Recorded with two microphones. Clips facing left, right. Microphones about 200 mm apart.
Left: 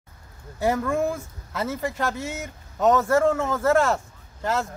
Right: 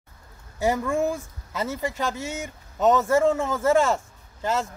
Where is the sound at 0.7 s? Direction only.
Centre (ahead or behind).